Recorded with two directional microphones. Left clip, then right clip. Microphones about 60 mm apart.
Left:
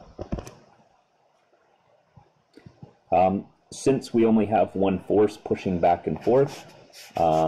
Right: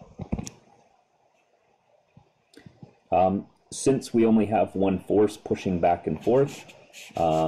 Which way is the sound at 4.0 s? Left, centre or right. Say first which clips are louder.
Left 1 dB; centre.